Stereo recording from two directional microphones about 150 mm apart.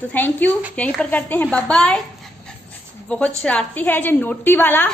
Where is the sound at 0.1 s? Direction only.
10° left (ahead or behind).